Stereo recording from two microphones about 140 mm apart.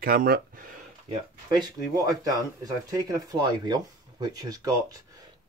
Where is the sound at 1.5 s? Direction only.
30° right (ahead or behind).